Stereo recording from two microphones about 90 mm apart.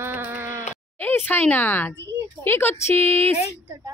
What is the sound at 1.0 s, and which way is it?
Speech, 25° left (ahead or behind).